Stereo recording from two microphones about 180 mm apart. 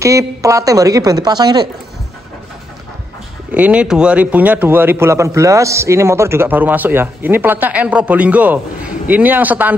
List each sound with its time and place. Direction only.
0.0 s a woman's voice: 15° right (ahead or behind)
3.5 s a man's voice: 5° right (ahead or behind)